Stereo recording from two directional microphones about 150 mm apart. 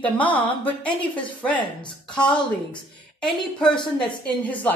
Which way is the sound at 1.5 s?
30° left (ahead or behind).